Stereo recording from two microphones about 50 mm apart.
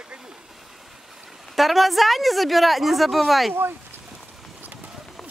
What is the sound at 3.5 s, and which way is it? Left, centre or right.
Speech, right.